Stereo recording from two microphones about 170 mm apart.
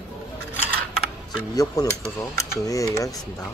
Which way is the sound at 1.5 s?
20° left (ahead or behind).